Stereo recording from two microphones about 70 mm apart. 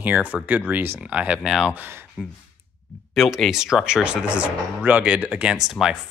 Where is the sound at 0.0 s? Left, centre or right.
Right.